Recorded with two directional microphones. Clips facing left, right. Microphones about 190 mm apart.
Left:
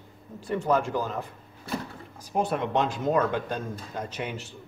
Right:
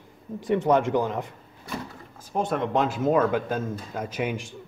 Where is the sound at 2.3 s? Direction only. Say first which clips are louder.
Right 1 dB; 5° left (ahead or behind).